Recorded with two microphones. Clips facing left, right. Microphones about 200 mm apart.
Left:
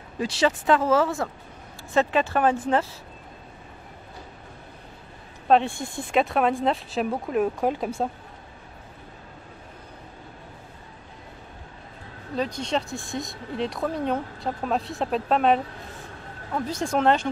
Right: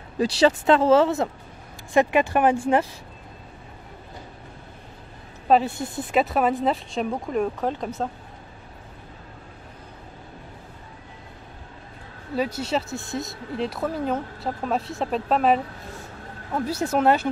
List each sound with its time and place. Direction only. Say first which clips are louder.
0.2 s speech: right 4 dB; 30° right (ahead or behind); by 2.9 s 15° right (ahead or behind)
5.5 s speech: right 1 dB; 5° right (ahead or behind)
12.4 s speech: right 2 dB; 5° right (ahead or behind)